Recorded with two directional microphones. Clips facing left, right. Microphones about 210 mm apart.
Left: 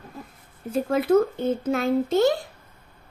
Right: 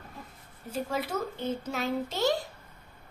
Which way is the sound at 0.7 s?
55° left (ahead or behind).